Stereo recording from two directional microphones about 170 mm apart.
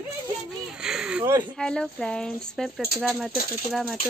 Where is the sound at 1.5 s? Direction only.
5° left (ahead or behind).